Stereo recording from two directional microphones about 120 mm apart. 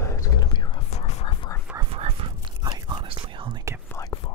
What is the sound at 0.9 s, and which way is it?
Whispering, 65° left (ahead or behind).